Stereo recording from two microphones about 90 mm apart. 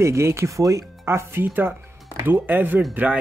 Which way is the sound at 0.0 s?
30° right (ahead or behind).